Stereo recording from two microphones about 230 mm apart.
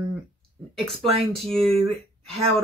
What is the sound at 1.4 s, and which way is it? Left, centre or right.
Speech, centre.